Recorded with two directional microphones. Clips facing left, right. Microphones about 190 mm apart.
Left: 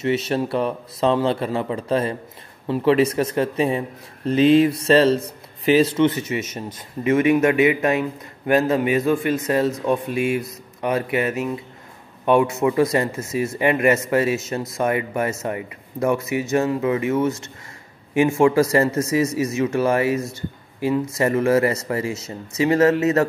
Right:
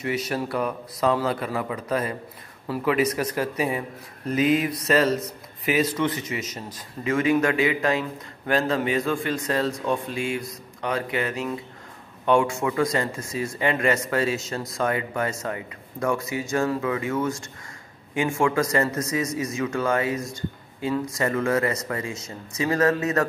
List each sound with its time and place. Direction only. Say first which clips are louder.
0.0 s speech: left 6 dB; 25° left (ahead or behind)
10.0 s speech: left 6 dB; 25° right (ahead or behind)
10.8 s speech: left 5 dB; 20° left (ahead or behind)
12.3 s speech: left 4 dB; 20° left (ahead or behind)
21.1 s speech: left 6 dB; 25° left (ahead or behind)